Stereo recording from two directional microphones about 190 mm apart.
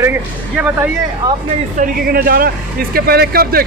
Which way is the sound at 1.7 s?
50° right (ahead or behind).